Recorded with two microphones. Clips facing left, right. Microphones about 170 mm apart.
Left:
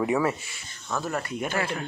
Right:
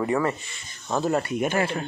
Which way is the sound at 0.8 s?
25° right (ahead or behind).